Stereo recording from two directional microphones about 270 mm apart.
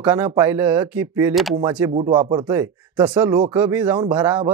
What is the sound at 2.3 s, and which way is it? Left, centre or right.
Speech, centre.